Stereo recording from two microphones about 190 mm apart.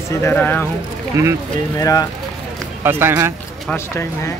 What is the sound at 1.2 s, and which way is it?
Speech, 15° right (ahead or behind).